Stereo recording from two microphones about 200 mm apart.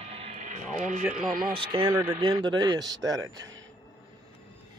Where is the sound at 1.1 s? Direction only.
40° right (ahead or behind).